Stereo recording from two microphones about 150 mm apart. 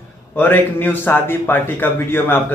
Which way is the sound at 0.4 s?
15° left (ahead or behind).